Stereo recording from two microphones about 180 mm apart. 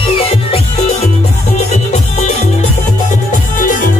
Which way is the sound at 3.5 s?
50° left (ahead or behind).